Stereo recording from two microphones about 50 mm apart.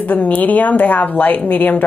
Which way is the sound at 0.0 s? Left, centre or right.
Left.